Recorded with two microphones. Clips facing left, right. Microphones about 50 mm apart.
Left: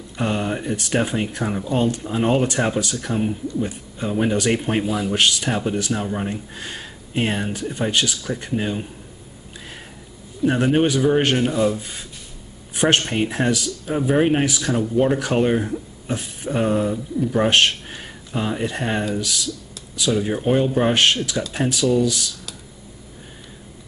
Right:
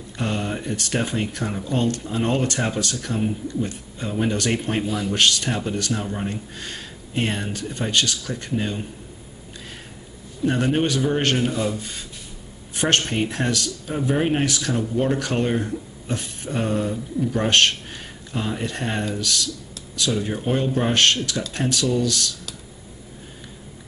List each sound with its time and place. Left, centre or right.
0.2 s speech: centre
10.4 s speech: centre